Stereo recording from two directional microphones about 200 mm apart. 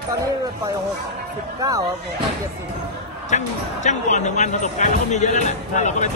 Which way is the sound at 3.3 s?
35° left (ahead or behind).